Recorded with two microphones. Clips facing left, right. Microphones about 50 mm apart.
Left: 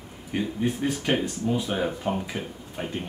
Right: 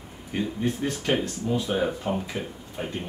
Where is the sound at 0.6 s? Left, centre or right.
Centre.